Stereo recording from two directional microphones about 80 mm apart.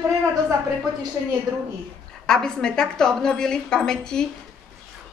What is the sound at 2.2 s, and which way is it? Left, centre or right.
A woman's voice, centre.